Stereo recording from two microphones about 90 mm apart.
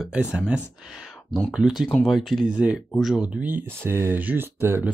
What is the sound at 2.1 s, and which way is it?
Speech, 5° right (ahead or behind).